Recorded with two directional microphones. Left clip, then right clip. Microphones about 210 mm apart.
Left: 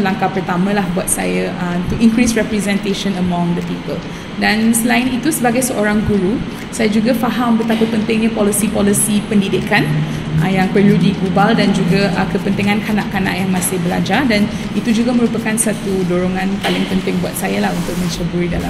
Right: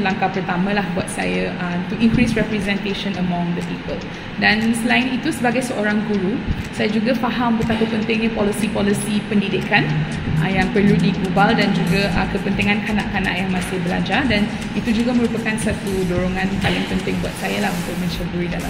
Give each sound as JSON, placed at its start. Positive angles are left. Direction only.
{"t": 2.0, "sound": "a woman's voice", "side_deg": 25}
{"t": 4.4, "sound": "a woman's voice", "side_deg": 20}